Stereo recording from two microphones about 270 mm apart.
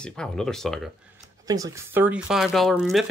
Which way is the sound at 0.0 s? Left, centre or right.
Centre.